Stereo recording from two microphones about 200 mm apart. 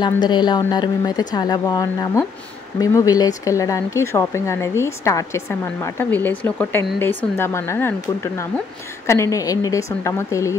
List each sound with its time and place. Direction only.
0.0 s a woman's voice: 20° left (ahead or behind)